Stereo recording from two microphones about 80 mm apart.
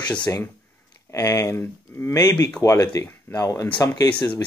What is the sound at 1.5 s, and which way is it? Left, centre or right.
Speech, left.